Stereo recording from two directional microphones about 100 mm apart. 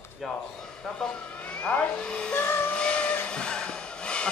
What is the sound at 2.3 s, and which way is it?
Vehicle, 20° left (ahead or behind).